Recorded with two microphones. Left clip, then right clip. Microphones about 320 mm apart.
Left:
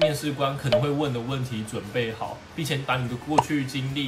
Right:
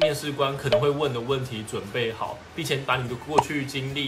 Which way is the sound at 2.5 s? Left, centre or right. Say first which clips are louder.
Right 2 dB; centre.